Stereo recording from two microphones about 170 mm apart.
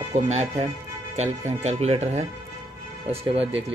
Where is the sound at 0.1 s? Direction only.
40° right (ahead or behind).